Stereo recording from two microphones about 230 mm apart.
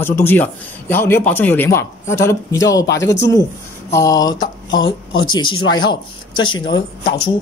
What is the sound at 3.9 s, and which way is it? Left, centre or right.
A man's voice, centre.